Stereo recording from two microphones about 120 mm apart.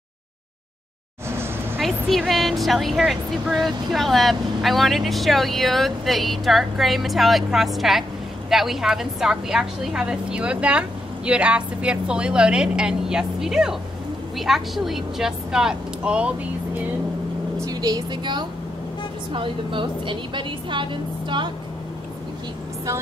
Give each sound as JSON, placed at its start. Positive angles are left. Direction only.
{"t": 1.8, "sound": "a woman's voice", "side_deg": 0}
{"t": 17.6, "sound": "a woman's voice", "side_deg": -30}